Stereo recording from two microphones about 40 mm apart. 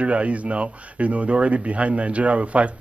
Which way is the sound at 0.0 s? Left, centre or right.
Right.